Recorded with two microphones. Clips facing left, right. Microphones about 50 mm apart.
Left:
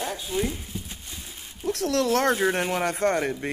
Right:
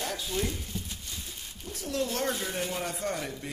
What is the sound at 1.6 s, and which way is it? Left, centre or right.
Speech, left.